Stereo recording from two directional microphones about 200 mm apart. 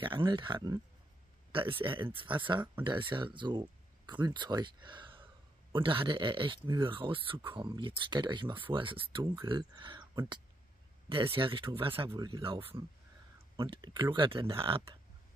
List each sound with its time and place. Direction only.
0.0 s speech: 25° right (ahead or behind)